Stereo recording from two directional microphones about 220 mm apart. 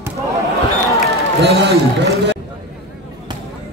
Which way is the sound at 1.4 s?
50° right (ahead or behind).